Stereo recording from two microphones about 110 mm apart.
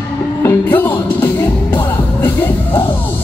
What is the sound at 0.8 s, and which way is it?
Music, 20° left (ahead or behind).